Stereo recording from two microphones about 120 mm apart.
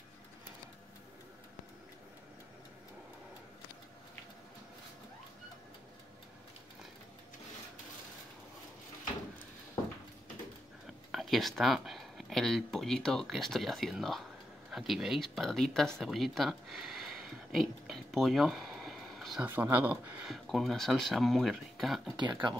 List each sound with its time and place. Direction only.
11.1 s speech: centre (ahead or behind)
16.0 s a sound: centre (ahead or behind)
19.4 s speech: 15° right (ahead or behind)
20.2 s speech: centre (ahead or behind)
22.1 s speech: 40° right (ahead or behind)